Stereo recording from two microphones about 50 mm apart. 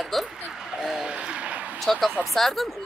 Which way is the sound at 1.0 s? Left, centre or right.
Centre.